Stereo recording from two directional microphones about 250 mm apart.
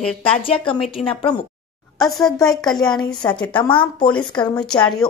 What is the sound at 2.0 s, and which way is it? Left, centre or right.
Speech, centre.